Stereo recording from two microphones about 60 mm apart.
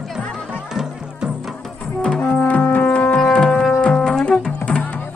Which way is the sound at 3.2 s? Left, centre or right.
Centre.